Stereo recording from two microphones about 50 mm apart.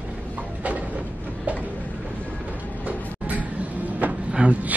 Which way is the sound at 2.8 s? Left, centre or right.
Right.